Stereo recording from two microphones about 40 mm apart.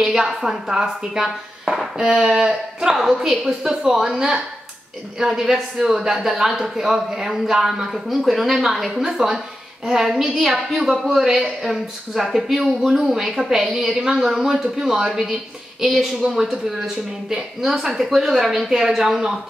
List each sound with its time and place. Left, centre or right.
0.0 s a man's voice: centre